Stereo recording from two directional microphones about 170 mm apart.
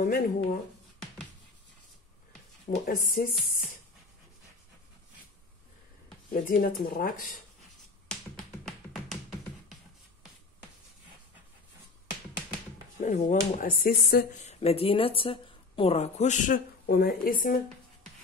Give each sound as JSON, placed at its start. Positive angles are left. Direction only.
{"t": 0.0, "sound": "speech", "side_deg": 55}
{"t": 2.7, "sound": "speech", "side_deg": 55}
{"t": 6.3, "sound": "speech", "side_deg": 55}
{"t": 13.0, "sound": "speech", "side_deg": 45}
{"t": 14.4, "sound": "speech", "side_deg": 40}